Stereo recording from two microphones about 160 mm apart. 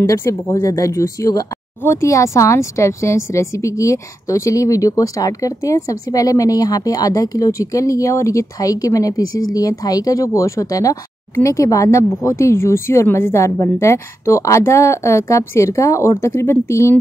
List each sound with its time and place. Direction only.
0.0 s speech: 20° left (ahead or behind)